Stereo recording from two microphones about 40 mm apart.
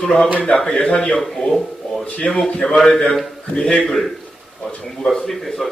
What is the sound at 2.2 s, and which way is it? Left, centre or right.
Speech, centre.